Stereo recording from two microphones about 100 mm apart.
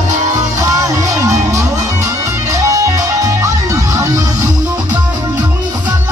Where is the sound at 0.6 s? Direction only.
30° right (ahead or behind).